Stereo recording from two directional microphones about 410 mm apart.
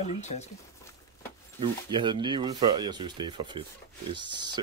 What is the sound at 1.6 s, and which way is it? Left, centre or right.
Speech, centre.